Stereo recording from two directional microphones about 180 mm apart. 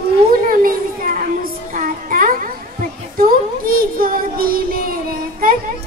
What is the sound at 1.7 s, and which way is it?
Music, 50° right (ahead or behind).